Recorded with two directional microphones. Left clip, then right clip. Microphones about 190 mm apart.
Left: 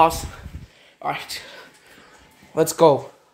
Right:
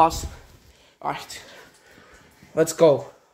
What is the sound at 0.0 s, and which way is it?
Speech, 10° left (ahead or behind).